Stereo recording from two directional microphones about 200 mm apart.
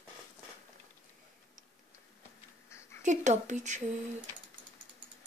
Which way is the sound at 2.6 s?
15° left (ahead or behind).